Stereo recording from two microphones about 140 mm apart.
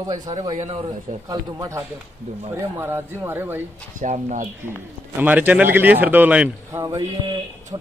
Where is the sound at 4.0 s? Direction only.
65° right (ahead or behind).